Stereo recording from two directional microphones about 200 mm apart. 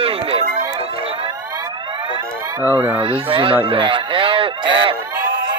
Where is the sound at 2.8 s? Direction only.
15° right (ahead or behind).